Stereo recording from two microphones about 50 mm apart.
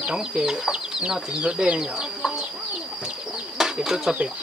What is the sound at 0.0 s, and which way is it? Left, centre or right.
Speech, centre.